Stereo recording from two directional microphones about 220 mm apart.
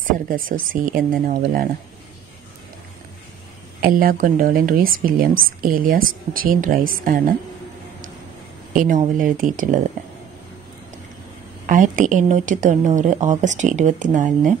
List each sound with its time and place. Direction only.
0.0 s speech: 40° right (ahead or behind)
3.8 s speech: 40° right (ahead or behind)
8.7 s speech: 35° right (ahead or behind)
11.7 s speech: 35° right (ahead or behind)